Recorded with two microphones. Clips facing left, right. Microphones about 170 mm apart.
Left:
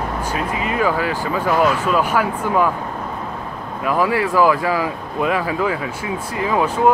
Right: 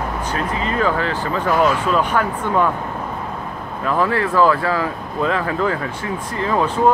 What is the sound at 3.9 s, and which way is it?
Speech, 10° left (ahead or behind).